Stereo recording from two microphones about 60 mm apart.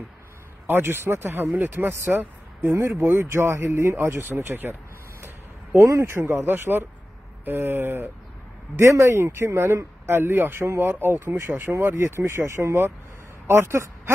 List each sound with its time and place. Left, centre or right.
0.7 s speech: right
5.2 s a sound: right
5.9 s speech: right
8.7 s speech: right
11.2 s speech: right